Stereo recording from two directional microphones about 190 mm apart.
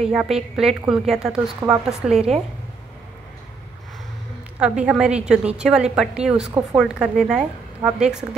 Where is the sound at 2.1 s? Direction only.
35° right (ahead or behind).